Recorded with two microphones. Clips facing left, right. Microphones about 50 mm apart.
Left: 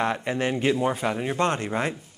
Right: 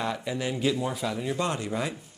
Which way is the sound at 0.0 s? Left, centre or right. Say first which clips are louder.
Left 5 dB; left.